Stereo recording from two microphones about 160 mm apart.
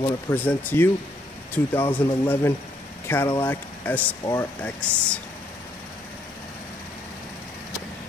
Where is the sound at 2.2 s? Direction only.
10° left (ahead or behind).